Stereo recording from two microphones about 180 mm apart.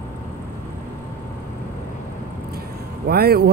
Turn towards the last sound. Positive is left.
turn(degrees=-60)  # may be behind; listen again after turning